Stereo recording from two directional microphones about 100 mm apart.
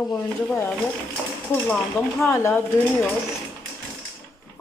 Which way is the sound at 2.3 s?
25° left (ahead or behind).